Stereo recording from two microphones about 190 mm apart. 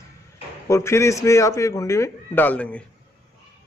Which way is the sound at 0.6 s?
15° left (ahead or behind).